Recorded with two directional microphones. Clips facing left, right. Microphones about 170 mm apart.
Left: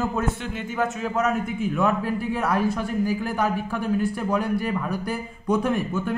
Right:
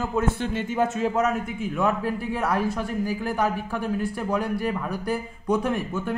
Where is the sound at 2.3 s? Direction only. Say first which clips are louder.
Left 2 dB; 35° right (ahead or behind).